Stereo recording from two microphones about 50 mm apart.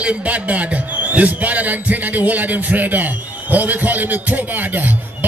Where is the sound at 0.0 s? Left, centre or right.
Right.